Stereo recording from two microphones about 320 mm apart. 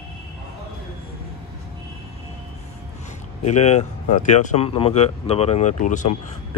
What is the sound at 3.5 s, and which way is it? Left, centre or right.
Speech, left.